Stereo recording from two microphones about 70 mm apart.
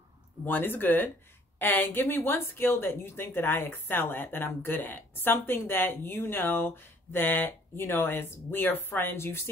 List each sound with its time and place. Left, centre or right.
0.5 s speech: left